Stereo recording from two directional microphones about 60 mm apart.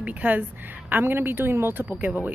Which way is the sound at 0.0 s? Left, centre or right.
Right.